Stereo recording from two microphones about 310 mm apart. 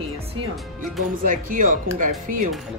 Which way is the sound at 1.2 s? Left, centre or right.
Right.